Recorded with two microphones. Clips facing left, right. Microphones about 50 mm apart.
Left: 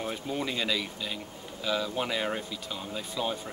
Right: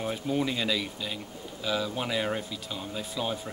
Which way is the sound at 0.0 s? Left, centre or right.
Centre.